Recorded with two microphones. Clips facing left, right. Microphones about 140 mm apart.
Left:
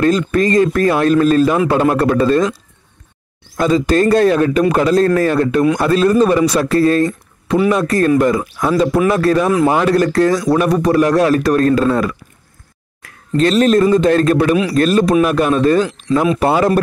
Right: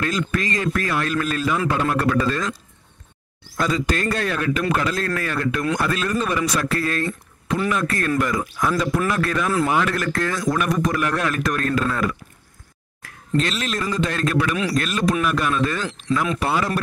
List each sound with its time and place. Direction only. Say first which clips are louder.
0.0 s speech: left 10 dB; 40° left (ahead or behind)
3.6 s speech: left 10 dB; 30° left (ahead or behind)
13.4 s speech: left 14 dB; 40° left (ahead or behind)
16.4 s a man's voice: left 10 dB; 45° left (ahead or behind)